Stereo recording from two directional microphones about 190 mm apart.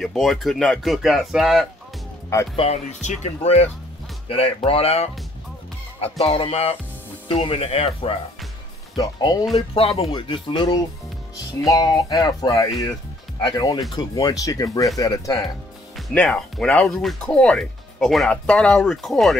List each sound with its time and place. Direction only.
0.0 s speech: centre (ahead or behind)
2.5 s speech: 35° left (ahead or behind)
8.9 s speech: 20° left (ahead or behind)
9.8 s speech: 30° left (ahead or behind)
16.1 s speech: 5° left (ahead or behind)